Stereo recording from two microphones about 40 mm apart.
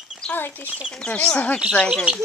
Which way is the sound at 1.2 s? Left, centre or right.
Left.